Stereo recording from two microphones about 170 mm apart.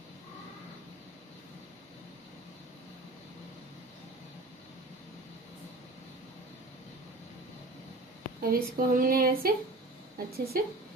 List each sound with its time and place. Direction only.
8.4 s a woman's voice: 60° right (ahead or behind)